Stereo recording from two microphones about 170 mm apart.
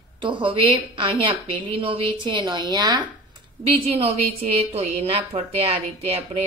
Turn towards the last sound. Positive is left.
turn(degrees=-35)  # may be behind; listen again after turning